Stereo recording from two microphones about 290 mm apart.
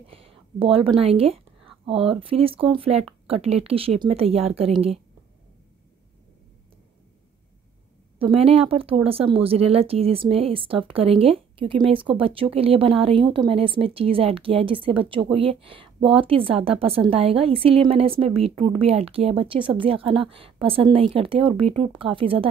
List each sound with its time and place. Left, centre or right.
0.1 s a woman's voice: centre
8.2 s a woman's voice: centre